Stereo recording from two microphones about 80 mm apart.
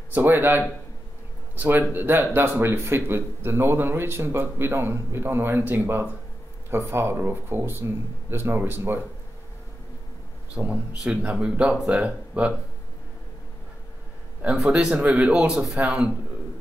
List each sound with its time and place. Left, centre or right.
0.1 s speech: right
10.5 s a man's voice: centre
14.4 s a man's voice: centre